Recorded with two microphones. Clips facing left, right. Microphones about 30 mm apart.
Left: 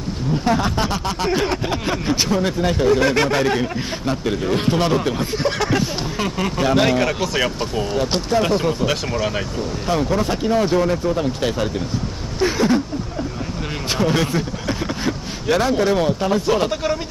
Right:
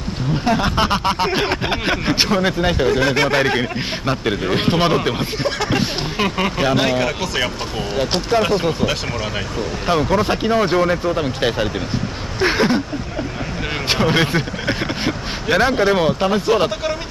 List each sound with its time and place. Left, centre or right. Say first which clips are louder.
0.5 s speech: right 3 dB; right
3.3 s speech: right 1 dB; right
6.7 s speech: left 1 dB; centre
7.7 s speech: even; right
9.8 s speech: right 3 dB; right
12.4 s speech: right 1 dB; right
13.8 s speech: right 2 dB; right